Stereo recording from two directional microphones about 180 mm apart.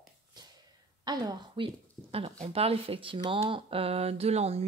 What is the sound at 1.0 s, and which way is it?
Speech, 20° right (ahead or behind).